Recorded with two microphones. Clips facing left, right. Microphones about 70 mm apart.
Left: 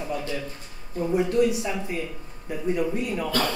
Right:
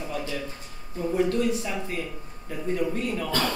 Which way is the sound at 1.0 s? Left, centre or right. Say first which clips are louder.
Left 2 dB; centre.